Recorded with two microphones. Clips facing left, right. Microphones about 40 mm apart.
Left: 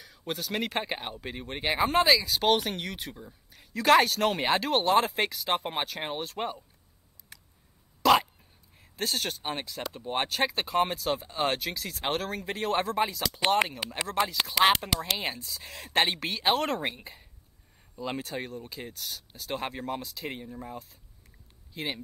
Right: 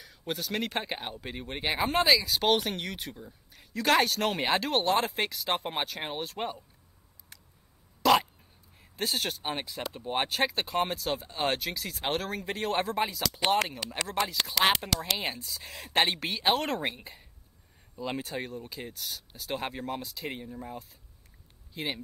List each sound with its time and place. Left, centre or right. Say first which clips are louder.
0.0 s speech: even; centre
8.0 s hiccup: left 1 dB; centre
8.9 s speech: even; centre
13.2 s speech: left 1 dB; centre